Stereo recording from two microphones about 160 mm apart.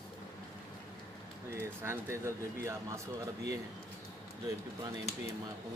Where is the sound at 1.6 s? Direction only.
15° right (ahead or behind).